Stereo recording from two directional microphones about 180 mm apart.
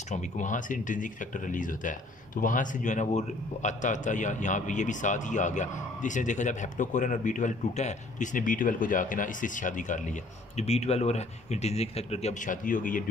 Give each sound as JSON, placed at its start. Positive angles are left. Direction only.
{"t": 0.1, "sound": "speech", "side_deg": 40}